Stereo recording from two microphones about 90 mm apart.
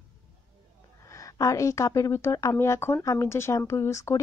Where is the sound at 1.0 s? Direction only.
40° left (ahead or behind).